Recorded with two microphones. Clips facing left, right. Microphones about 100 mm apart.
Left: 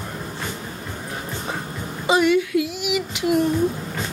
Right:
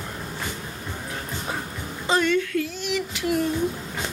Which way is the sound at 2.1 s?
10° left (ahead or behind).